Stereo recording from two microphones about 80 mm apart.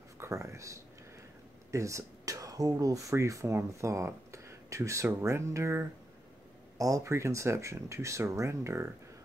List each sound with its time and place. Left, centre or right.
0.2 s speech: right